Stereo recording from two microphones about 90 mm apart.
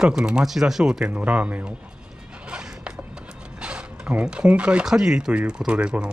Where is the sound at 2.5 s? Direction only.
10° right (ahead or behind).